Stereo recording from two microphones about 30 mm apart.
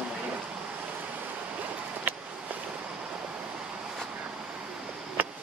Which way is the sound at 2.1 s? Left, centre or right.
Right.